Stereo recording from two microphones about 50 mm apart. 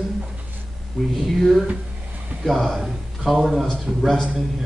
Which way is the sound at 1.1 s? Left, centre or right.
Centre.